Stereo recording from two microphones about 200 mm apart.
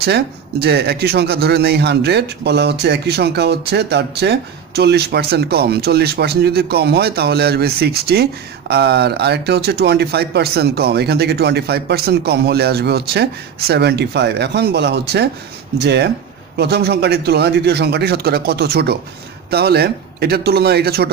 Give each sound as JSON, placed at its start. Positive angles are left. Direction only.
{"t": 0.0, "sound": "speech", "side_deg": -55}